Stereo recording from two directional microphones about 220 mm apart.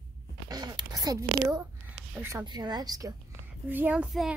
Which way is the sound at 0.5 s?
15° right (ahead or behind).